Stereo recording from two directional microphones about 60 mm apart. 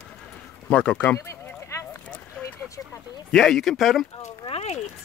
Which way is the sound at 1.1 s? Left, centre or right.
Left.